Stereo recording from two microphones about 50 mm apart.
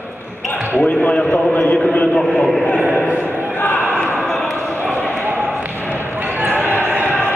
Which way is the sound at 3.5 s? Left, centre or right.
Left.